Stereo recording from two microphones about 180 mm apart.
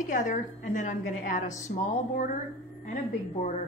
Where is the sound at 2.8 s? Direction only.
45° left (ahead or behind).